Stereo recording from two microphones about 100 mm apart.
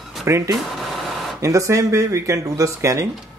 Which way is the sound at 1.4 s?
30° right (ahead or behind).